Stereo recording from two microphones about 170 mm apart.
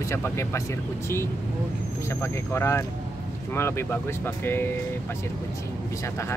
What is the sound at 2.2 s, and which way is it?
Speech, 15° left (ahead or behind).